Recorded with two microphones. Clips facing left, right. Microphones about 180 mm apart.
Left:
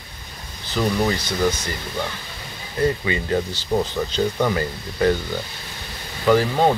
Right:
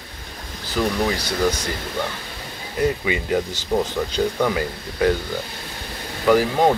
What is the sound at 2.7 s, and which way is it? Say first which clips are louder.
Speech: even; 15° right (ahead or behind).